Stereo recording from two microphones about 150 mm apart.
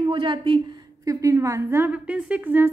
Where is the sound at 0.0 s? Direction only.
35° right (ahead or behind).